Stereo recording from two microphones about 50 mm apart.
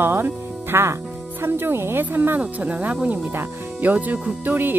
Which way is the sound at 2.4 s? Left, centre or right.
Right.